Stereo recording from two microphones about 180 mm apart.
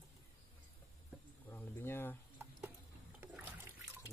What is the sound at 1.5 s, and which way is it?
Speech, 10° left (ahead or behind).